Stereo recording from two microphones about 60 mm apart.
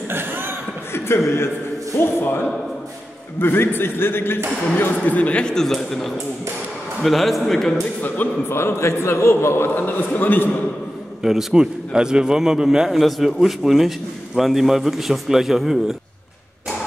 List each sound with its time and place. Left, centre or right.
0.1 s chuckle: right
0.9 s a man's voice: left
5.0 s a man's voice: left; by 7.7 s centre
8.5 s a man's voice: left
9.8 s a man's voice: left
11.2 s a man's voice: centre